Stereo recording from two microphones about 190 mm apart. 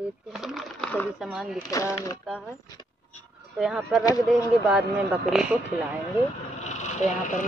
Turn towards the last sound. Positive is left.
turn(degrees=40)  # may be behind; listen again after turning